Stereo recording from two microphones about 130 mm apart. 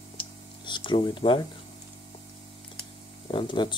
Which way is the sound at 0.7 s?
40° left (ahead or behind).